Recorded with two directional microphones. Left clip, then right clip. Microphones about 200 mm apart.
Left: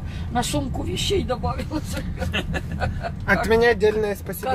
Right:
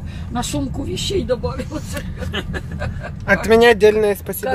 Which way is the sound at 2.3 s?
45° left (ahead or behind).